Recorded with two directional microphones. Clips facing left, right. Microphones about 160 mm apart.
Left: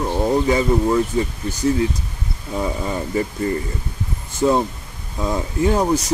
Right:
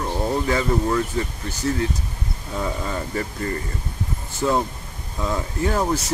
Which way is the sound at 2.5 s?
15° left (ahead or behind).